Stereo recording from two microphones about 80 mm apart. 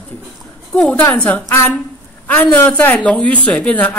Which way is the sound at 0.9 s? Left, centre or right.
Left.